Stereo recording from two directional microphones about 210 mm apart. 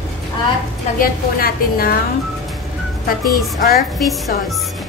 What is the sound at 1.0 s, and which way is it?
Speech, 45° left (ahead or behind).